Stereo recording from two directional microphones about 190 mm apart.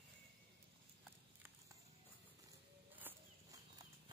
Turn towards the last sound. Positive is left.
turn(degrees=-10)  # may be behind; listen again after turning